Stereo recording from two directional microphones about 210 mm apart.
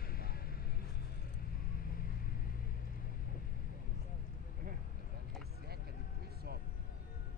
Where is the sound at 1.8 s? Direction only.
45° left (ahead or behind).